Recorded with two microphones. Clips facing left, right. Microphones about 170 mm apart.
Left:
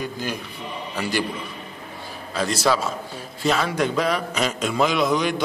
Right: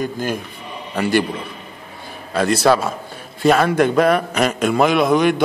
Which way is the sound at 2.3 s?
60° right (ahead or behind).